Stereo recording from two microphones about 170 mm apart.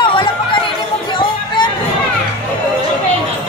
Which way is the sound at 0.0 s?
30° left (ahead or behind).